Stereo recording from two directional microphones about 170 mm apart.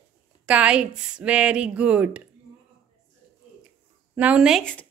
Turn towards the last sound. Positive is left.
turn(degrees=5)  # may be behind; listen again after turning